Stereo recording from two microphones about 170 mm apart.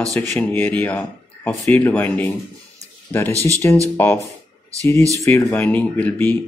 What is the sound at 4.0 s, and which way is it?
Speech, 15° left (ahead or behind).